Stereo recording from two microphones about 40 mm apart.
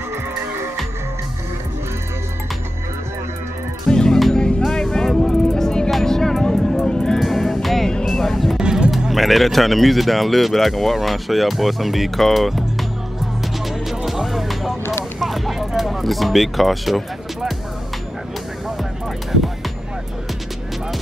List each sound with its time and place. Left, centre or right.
3.9 s music: centre
7.2 s music: centre
8.0 s vehicle: centre
8.5 s music: centre
9.1 s speech: centre
13.4 s music: centre